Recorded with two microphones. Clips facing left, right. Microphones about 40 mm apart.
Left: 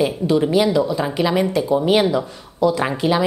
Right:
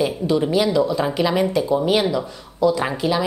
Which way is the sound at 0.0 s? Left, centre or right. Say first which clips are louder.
Left 2 dB; centre.